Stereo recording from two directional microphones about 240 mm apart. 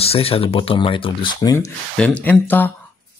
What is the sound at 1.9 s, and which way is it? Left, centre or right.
Speech, centre.